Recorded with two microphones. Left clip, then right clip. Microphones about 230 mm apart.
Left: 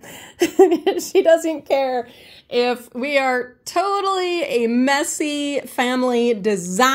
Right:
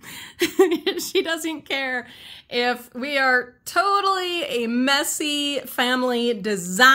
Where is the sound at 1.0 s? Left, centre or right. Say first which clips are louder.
Left 9 dB; right.